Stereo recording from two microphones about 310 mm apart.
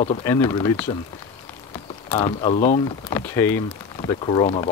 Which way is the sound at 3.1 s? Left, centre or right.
Centre.